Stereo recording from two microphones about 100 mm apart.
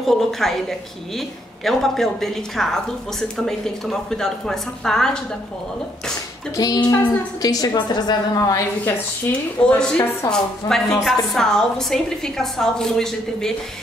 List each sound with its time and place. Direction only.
0.0 s a woman's voice: 5° left (ahead or behind)
6.5 s a woman's voice: 40° left (ahead or behind)
9.6 s a woman's voice: 10° left (ahead or behind)